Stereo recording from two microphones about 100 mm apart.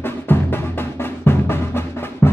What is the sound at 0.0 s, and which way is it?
Music, 20° left (ahead or behind).